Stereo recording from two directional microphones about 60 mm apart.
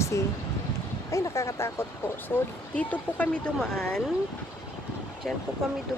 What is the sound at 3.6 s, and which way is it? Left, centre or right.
Speech, centre.